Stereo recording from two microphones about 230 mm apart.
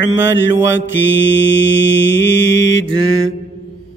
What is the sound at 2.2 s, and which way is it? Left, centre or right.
Speech, left.